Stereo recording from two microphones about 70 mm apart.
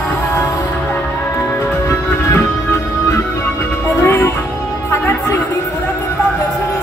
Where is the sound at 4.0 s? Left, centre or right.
Left.